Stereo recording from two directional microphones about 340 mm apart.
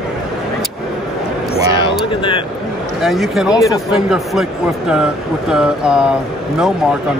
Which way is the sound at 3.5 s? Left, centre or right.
Centre.